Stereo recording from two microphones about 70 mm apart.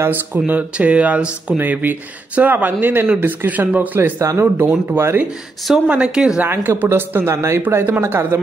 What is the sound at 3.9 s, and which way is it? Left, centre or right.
Speech, right.